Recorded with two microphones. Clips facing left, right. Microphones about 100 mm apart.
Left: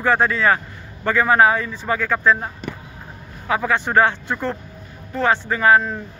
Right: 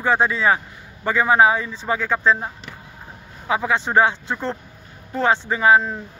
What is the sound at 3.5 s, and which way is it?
A man's voice, 20° right (ahead or behind).